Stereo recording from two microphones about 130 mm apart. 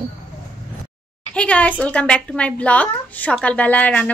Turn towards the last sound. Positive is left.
turn(degrees=10)  # may be behind; listen again after turning